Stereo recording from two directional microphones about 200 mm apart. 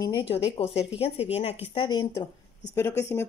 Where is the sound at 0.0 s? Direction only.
25° left (ahead or behind).